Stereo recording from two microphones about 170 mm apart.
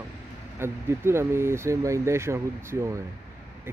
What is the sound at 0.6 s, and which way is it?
Speech, 15° right (ahead or behind).